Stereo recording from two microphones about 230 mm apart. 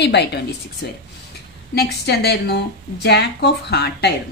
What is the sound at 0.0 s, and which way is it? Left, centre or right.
Speech, left.